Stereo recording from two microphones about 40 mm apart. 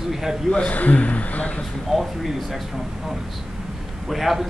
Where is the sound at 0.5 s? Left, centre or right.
Left.